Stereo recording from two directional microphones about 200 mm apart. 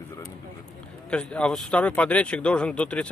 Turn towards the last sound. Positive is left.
turn(degrees=5)  # may be behind; listen again after turning